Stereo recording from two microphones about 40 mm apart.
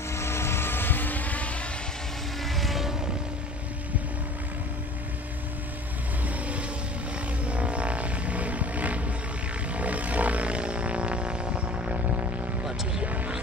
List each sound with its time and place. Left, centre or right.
0.1 s vehicle: left
2.4 s vehicle: centre
6.2 s vehicle: right
9.8 s a sound: right
13.0 s vehicle: right